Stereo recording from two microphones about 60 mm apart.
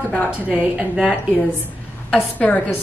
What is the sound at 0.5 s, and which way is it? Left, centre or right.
Speech, centre.